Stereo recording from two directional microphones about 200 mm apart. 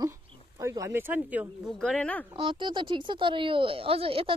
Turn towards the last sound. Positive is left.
turn(degrees=-30)  # may be behind; listen again after turning